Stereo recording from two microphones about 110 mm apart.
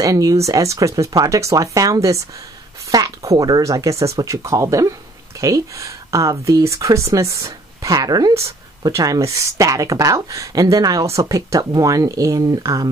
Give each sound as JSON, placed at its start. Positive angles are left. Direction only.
{"t": 0.0, "sound": "speech", "side_deg": -30}